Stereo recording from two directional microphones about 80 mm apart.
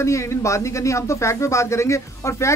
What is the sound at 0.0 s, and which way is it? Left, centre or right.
Speech, left.